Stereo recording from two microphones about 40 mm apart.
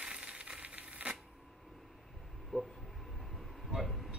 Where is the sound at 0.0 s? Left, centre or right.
Right.